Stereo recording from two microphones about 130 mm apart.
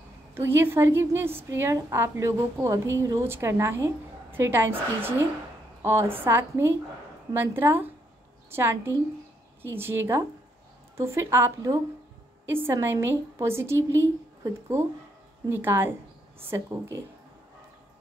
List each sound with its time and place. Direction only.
0.3 s a woman's voice: 20° right (ahead or behind)